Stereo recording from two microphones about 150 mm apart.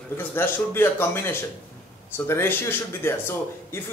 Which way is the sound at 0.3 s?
15° left (ahead or behind).